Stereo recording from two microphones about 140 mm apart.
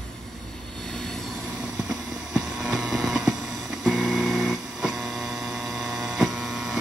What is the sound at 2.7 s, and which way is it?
Vehicle, 5° right (ahead or behind).